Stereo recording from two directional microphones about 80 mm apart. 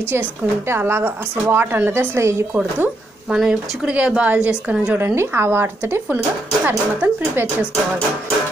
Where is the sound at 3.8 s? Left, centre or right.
Centre.